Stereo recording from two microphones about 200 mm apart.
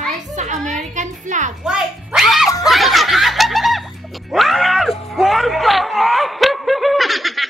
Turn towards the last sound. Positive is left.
turn(degrees=0)  # may be behind; listen again after turning